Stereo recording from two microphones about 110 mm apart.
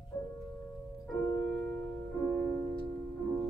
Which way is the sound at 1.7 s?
20° left (ahead or behind).